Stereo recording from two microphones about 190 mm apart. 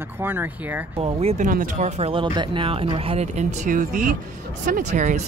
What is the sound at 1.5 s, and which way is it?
Speech, 45° right (ahead or behind).